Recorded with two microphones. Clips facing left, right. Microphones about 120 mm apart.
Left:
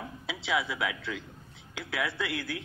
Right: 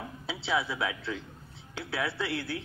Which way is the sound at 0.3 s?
30° right (ahead or behind).